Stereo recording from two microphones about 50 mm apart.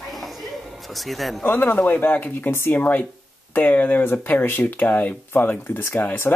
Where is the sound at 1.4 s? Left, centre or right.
Left.